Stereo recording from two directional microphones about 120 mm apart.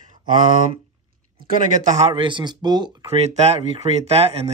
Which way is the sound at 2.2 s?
40° right (ahead or behind).